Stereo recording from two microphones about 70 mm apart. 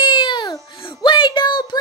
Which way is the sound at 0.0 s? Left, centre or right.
Left.